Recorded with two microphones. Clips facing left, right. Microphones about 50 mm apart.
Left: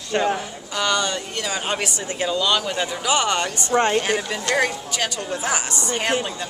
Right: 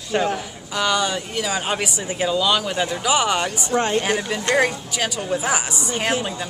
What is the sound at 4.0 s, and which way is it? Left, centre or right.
Speech, centre.